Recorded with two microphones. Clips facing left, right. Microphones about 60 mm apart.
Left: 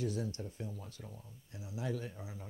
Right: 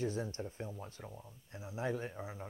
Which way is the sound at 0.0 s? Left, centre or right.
Right.